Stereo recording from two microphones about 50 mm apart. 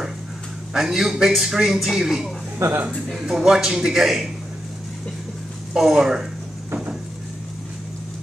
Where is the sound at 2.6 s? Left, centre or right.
Right.